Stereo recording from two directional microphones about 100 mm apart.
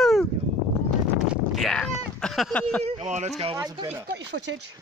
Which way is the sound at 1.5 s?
5° left (ahead or behind).